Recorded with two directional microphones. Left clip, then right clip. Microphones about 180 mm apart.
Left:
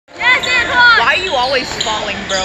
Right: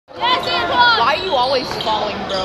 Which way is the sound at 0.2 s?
30° left (ahead or behind).